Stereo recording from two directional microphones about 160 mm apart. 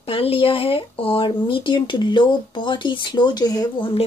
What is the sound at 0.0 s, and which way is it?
Speech, 35° left (ahead or behind).